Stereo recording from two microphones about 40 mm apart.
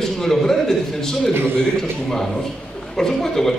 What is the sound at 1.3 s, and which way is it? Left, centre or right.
Speech, right.